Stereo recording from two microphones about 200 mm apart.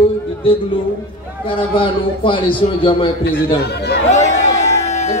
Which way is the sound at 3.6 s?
55° left (ahead or behind).